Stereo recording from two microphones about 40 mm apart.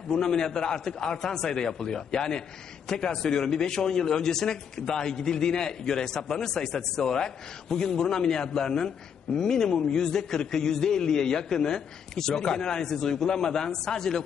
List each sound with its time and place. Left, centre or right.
0.1 s a man's voice: centre